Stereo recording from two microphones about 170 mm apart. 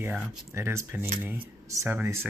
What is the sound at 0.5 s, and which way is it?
Speech, 15° right (ahead or behind).